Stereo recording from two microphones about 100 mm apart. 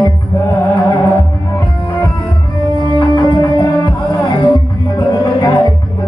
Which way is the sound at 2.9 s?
55° left (ahead or behind).